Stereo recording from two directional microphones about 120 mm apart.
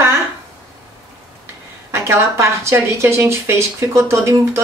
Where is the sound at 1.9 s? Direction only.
20° right (ahead or behind).